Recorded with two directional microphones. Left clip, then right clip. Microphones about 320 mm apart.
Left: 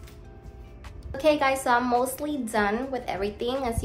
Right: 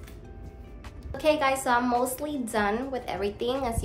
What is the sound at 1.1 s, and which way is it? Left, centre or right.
A woman's voice, centre.